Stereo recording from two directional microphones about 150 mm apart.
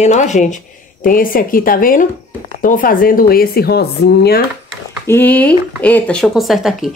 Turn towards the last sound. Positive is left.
turn(degrees=0)  # may be behind; listen again after turning